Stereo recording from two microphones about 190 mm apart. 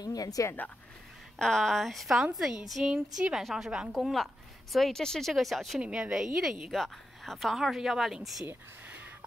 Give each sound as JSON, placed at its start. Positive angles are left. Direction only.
{"t": 0.0, "sound": "speech", "side_deg": 20}
{"t": 1.4, "sound": "a woman's voice", "side_deg": 0}